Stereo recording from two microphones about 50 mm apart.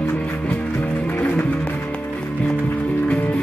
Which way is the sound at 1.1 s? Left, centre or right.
Left.